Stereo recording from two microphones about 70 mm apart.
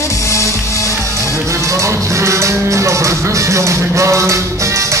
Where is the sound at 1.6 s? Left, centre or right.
Right.